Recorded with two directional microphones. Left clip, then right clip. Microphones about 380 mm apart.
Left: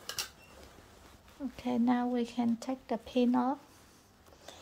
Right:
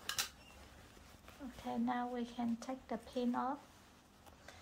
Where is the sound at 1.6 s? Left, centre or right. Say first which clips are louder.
Left 8 dB; left.